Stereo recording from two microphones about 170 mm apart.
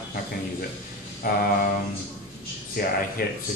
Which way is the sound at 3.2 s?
60° left (ahead or behind).